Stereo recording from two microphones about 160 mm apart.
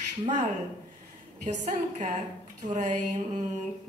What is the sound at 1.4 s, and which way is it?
Speech, 50° right (ahead or behind).